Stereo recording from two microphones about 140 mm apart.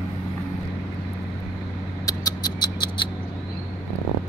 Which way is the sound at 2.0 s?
25° left (ahead or behind).